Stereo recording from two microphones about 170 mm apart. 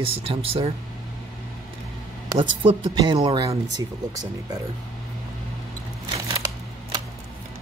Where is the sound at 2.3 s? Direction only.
30° right (ahead or behind).